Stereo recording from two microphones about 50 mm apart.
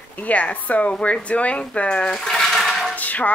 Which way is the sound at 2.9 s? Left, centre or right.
Left.